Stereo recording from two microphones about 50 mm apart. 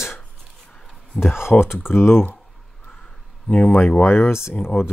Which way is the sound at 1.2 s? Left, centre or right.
Left.